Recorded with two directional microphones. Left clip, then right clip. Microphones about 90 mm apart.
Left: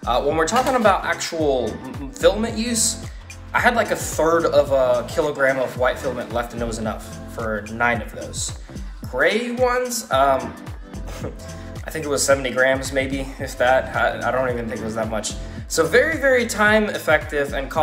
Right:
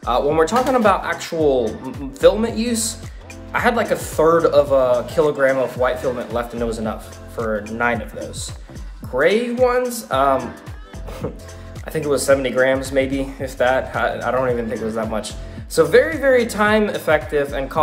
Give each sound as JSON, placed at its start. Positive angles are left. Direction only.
{"t": 0.0, "sound": "speech", "side_deg": -45}
{"t": 1.6, "sound": "speech", "side_deg": 5}
{"t": 2.1, "sound": "speech", "side_deg": -50}
{"t": 7.4, "sound": "speech", "side_deg": 0}
{"t": 7.7, "sound": "speech", "side_deg": -40}
{"t": 9.1, "sound": "speech", "side_deg": -55}
{"t": 12.1, "sound": "speech", "side_deg": -55}
{"t": 15.1, "sound": "speech", "side_deg": -60}